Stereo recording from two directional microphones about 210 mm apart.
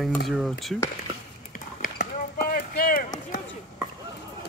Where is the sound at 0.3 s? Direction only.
Centre (ahead or behind).